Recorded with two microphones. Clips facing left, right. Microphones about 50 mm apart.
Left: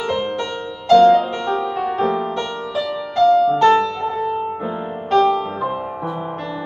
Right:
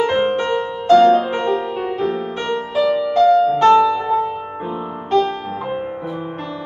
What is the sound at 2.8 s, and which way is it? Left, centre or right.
Music, centre.